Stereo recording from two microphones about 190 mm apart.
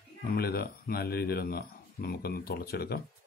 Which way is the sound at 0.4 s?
55° left (ahead or behind).